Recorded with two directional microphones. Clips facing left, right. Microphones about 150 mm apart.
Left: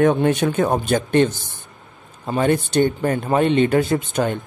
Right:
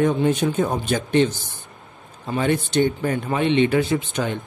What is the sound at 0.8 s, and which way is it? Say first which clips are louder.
Speech: left 2 dB; 50° left (ahead or behind).